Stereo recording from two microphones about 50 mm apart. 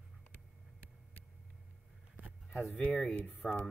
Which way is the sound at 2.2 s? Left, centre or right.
Right.